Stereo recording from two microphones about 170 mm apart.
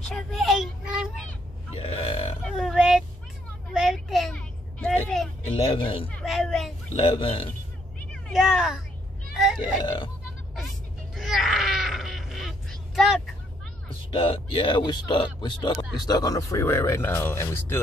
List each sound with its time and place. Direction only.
0.0 s a sound: centre (ahead or behind)
1.8 s burping: 35° left (ahead or behind)
2.5 s oink: centre (ahead or behind)
3.7 s vehicle: centre (ahead or behind)
5.5 s speech: 30° left (ahead or behind)
6.1 s a sound: centre (ahead or behind)
7.0 s speech: 35° left (ahead or behind)
8.1 s speech: centre (ahead or behind)
9.3 s a sound: centre (ahead or behind)
9.8 s speech: 25° left (ahead or behind)
11.1 s a sound: centre (ahead or behind)
14.1 s speech: 35° left (ahead or behind); by 17.8 s 15° left (ahead or behind)